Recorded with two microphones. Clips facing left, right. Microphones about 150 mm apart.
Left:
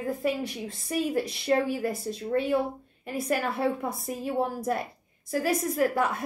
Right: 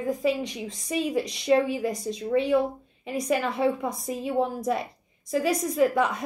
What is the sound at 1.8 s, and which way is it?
A woman's voice, 5° left (ahead or behind).